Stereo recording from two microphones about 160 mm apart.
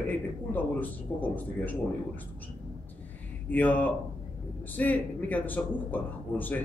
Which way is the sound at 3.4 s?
10° left (ahead or behind).